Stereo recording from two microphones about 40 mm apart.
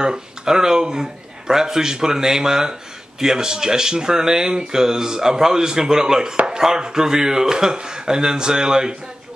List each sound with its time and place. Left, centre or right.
0.0 s speech: centre